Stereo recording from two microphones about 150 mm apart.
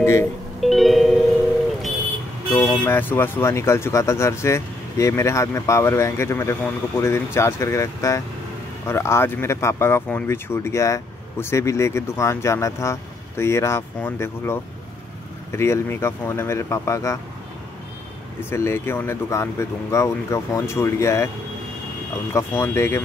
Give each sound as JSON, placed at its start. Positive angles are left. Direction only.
{"t": 0.0, "sound": "speech", "side_deg": 15}
{"t": 0.6, "sound": "music", "side_deg": 0}
{"t": 2.5, "sound": "speech", "side_deg": 15}
{"t": 18.4, "sound": "speech", "side_deg": 15}
{"t": 22.3, "sound": "speech", "side_deg": 15}